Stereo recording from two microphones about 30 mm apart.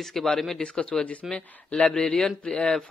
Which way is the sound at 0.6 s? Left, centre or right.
Left.